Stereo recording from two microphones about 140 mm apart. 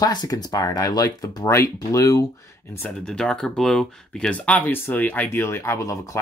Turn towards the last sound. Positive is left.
turn(degrees=20)  # may be behind; listen again after turning